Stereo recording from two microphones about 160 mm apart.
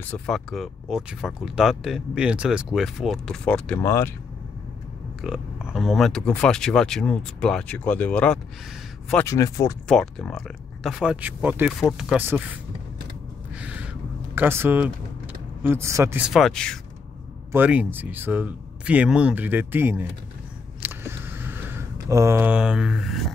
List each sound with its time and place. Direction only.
0.0 s speech: 5° left (ahead or behind)
5.2 s speech: 5° right (ahead or behind)
9.2 s speech: 20° left (ahead or behind)
9.8 s speech: 5° left (ahead or behind)
13.6 s a sound: 10° right (ahead or behind)
15.6 s speech: 15° right (ahead or behind)
16.3 s speech: centre (ahead or behind)
17.5 s speech: 10° right (ahead or behind)
20.8 s a sound: 15° right (ahead or behind)